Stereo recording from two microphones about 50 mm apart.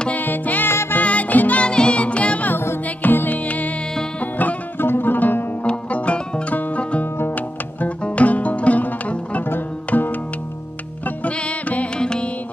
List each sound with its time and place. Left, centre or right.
0.1 s music: left
1.6 s music: left
2.5 s music: left
3.0 s music: left
4.7 s music: left
5.6 s music: left
6.5 s music: left
11.1 s music: left
12.0 s music: centre